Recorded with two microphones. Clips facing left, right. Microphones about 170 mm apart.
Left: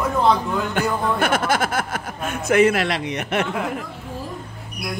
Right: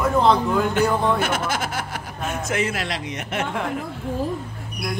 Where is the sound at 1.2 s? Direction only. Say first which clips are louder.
Left 4 dB; 55° left (ahead or behind).